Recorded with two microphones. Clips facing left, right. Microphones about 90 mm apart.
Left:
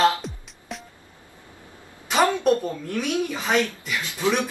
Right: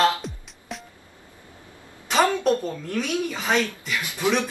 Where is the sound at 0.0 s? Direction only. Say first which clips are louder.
Left 1 dB; centre (ahead or behind).